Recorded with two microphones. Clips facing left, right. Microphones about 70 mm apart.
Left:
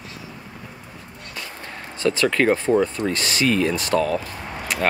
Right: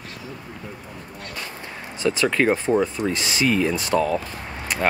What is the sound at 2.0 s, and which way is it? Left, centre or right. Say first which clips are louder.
Speech: left 1 dB; centre.